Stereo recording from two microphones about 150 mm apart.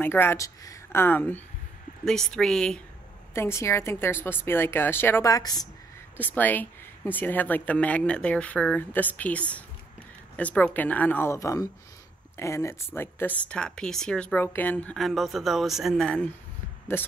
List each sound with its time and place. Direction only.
0.0 s speech: 15° left (ahead or behind)
3.3 s speech: 15° left (ahead or behind)
6.1 s speech: 10° left (ahead or behind)